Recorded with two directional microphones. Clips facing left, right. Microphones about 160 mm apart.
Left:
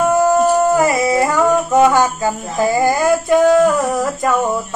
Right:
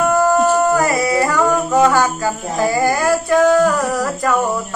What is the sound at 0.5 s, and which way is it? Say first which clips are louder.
Singing: left 2 dB; 20° left (ahead or behind).